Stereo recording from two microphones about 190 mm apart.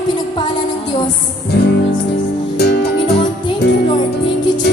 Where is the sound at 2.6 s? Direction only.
60° left (ahead or behind).